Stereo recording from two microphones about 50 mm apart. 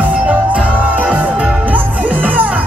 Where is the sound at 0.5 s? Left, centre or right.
Right.